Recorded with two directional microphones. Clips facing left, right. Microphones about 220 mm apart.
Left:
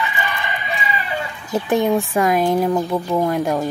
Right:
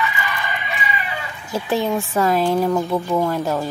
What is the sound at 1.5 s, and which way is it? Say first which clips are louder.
Speech: left 3 dB; 15° left (ahead or behind).